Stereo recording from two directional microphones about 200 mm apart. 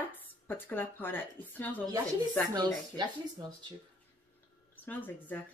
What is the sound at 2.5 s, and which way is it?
Speech, 20° right (ahead or behind).